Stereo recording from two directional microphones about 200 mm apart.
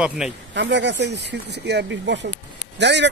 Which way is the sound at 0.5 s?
60° right (ahead or behind).